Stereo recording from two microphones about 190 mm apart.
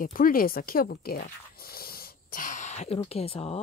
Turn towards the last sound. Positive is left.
turn(degrees=30)  # may be behind; listen again after turning